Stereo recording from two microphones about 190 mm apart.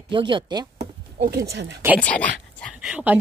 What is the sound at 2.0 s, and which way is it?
Speech, 5° left (ahead or behind).